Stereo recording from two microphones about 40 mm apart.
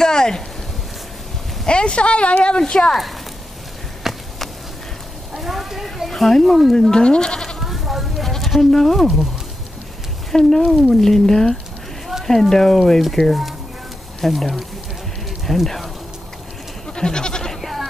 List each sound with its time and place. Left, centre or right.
0.0 s a sound: centre
1.7 s speech: left
2.6 s speech: centre
4.1 s a sound: centre
5.3 s a sound: centre
6.0 s speech: centre
6.9 s speech: left
7.6 s sheep: centre
10.3 s speech: centre
16.9 s goat: centre
17.6 s sheep: centre